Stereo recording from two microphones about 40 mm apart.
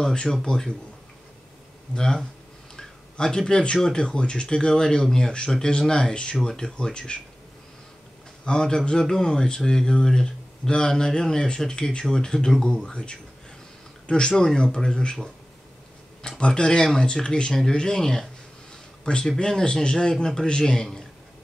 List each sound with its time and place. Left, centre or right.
0.0 s speech: centre
2.7 s a sound: centre
3.7 s speech: centre
8.5 s speech: centre
12.7 s speech: left
16.2 s speech: centre
19.3 s speech: centre